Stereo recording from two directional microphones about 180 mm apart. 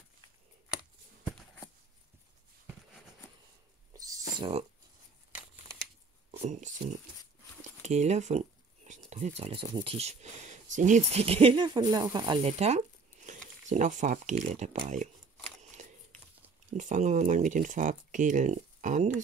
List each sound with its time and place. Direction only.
3.9 s a sound: 20° right (ahead or behind)
4.4 s speech: 35° right (ahead or behind)
6.3 s speech: 40° right (ahead or behind); by 12.4 s 25° right (ahead or behind)
12.4 s a sound: 35° right (ahead or behind)
13.7 s speech: 45° right (ahead or behind)
16.7 s speech: 45° right (ahead or behind)